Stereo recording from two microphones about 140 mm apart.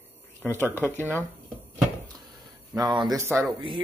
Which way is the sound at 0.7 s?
15° left (ahead or behind).